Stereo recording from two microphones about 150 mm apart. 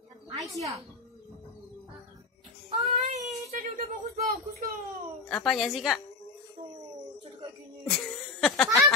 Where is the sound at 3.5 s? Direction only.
55° right (ahead or behind).